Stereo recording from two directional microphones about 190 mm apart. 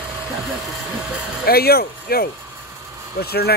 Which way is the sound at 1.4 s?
55° left (ahead or behind).